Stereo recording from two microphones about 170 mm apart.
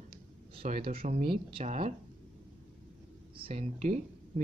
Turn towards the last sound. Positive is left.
turn(degrees=-40)  # may be behind; listen again after turning